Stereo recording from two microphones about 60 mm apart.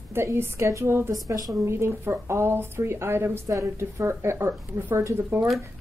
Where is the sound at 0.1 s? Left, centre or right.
Right.